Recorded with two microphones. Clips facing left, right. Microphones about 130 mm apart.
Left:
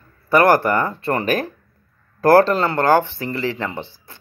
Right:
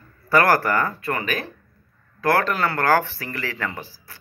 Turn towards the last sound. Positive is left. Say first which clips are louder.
# left 4 dB
turn(degrees=25)  # may be behind; listen again after turning